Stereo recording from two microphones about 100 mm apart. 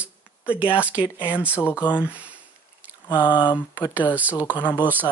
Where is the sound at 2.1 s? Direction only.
15° right (ahead or behind).